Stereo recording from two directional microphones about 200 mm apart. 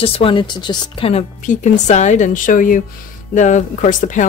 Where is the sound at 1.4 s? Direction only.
40° left (ahead or behind).